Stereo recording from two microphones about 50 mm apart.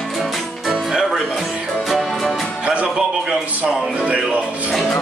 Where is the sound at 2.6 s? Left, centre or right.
Centre.